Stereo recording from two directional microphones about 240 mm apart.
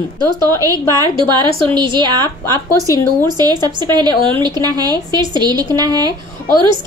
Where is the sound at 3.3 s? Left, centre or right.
Centre.